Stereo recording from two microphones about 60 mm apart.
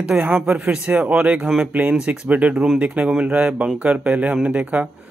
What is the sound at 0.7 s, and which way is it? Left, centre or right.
Speech, centre.